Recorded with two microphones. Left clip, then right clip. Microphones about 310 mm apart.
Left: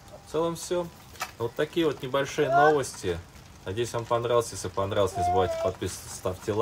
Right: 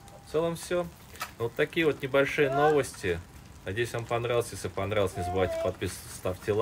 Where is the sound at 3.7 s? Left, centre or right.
Centre.